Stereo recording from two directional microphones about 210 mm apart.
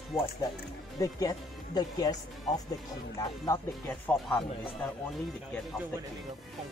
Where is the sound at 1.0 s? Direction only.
15° left (ahead or behind).